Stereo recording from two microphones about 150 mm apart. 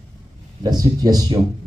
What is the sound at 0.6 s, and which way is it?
Speech, 25° right (ahead or behind).